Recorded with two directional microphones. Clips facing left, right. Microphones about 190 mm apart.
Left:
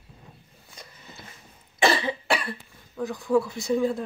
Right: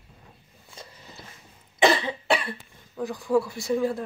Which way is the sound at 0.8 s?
25° right (ahead or behind).